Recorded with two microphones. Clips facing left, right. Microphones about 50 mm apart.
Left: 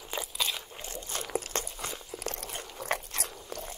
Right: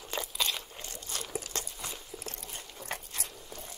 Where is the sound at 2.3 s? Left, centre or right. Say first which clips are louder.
Left 6 dB; left.